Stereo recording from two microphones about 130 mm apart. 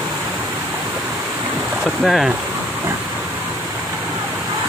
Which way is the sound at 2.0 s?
Centre (ahead or behind).